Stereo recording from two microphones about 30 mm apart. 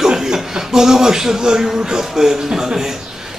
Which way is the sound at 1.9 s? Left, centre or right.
Centre.